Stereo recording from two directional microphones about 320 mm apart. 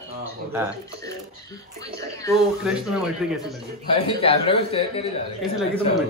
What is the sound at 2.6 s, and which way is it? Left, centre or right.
Speech, centre.